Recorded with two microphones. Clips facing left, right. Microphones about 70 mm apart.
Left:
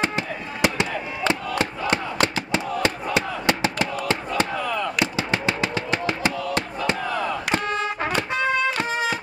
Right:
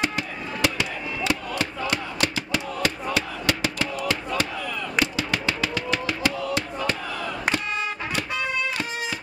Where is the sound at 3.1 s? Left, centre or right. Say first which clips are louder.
Left 3 dB; left.